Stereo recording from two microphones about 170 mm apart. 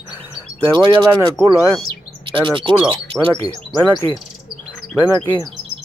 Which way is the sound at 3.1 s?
35° right (ahead or behind).